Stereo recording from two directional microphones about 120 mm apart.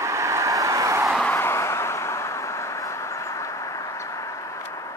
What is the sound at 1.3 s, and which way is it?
Vehicle, 20° left (ahead or behind).